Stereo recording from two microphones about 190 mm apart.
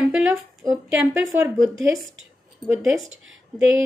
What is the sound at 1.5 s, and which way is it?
Speech, 15° right (ahead or behind).